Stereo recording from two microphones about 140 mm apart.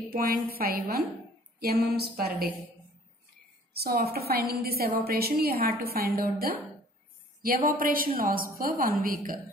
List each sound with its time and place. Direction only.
0.1 s a woman's voice: 90° right
3.8 s a woman's voice: 90° right